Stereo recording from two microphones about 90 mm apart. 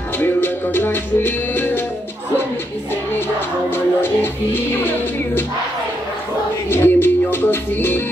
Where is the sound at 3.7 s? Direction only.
25° left (ahead or behind).